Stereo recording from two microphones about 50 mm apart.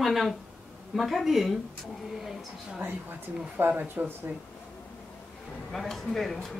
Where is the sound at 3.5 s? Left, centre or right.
Right.